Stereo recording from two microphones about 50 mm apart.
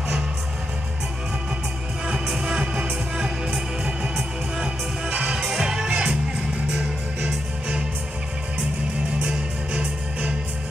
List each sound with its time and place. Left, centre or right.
2.0 s music: centre
5.1 s music: centre
9.2 s music: centre